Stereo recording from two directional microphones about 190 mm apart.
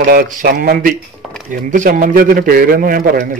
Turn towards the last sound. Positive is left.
turn(degrees=-50)  # may be behind; listen again after turning